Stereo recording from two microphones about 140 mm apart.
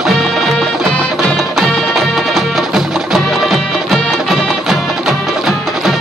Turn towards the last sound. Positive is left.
turn(degrees=0)  # may be behind; listen again after turning